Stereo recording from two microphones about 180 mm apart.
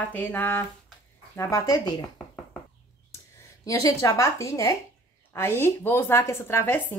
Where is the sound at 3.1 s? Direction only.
15° left (ahead or behind).